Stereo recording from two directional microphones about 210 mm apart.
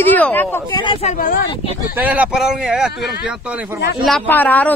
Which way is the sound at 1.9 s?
5° right (ahead or behind).